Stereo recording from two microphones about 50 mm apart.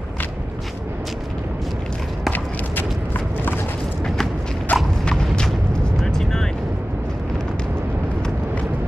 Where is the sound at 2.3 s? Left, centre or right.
Left.